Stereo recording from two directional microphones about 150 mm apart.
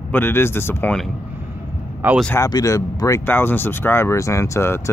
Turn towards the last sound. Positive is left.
turn(degrees=20)  # may be behind; listen again after turning